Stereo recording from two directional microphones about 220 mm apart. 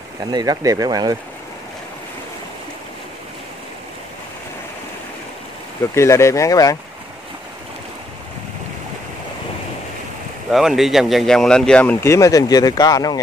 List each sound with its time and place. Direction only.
0.3 s speech: 15° right (ahead or behind)
5.9 s speech: 10° left (ahead or behind)
10.5 s speech: centre (ahead or behind); by 13.2 s 15° left (ahead or behind)